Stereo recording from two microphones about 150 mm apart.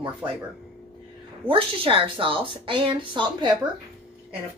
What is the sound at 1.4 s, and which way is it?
A woman's voice, 35° right (ahead or behind).